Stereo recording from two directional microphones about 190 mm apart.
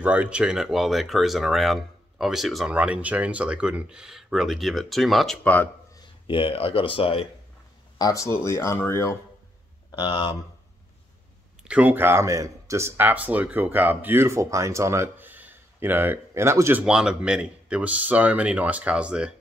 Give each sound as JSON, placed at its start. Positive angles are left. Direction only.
{"t": 0.0, "sound": "speech", "side_deg": -5}
{"t": 5.9, "sound": "speech", "side_deg": 25}
{"t": 8.0, "sound": "speech", "side_deg": 15}
{"t": 11.6, "sound": "speech", "side_deg": -5}